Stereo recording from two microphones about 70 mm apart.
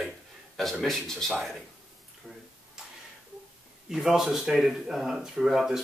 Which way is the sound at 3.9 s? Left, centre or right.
Centre.